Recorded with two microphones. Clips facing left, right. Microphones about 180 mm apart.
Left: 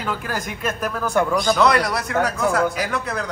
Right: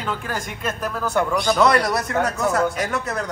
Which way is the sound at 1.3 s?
Centre (ahead or behind).